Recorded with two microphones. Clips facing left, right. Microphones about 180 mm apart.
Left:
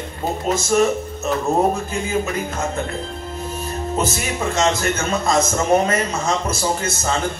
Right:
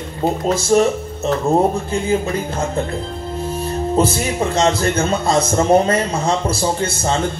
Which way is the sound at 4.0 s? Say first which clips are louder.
Right 6 dB; 30° right (ahead or behind).